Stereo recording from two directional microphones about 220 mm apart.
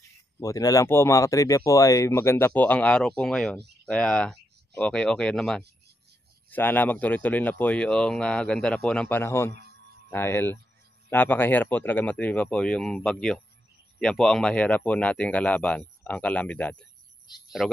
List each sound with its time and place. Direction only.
0.4 s speech: 15° left (ahead or behind)
17.3 s speech: 20° left (ahead or behind)